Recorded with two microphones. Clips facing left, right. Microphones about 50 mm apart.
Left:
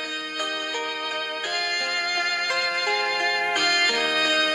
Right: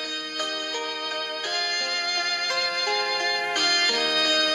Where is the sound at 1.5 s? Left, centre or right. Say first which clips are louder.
Left 2 dB; centre.